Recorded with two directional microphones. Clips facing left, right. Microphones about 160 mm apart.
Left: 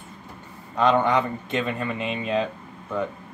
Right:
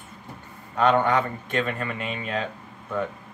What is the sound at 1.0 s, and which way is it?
Speech, 20° left (ahead or behind).